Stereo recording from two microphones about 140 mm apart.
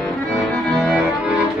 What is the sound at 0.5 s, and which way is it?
Music, centre (ahead or behind).